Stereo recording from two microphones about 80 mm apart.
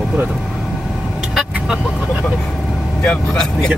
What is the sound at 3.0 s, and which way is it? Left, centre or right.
Speech, centre.